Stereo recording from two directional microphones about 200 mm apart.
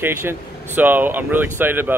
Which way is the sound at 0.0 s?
10° right (ahead or behind).